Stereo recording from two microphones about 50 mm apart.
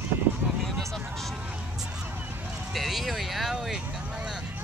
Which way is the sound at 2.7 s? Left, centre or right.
Centre.